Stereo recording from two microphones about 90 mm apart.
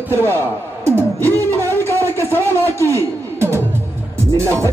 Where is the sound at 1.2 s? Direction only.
25° left (ahead or behind).